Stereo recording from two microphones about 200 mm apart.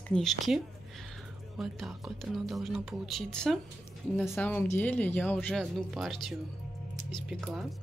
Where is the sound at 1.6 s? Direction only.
Centre (ahead or behind).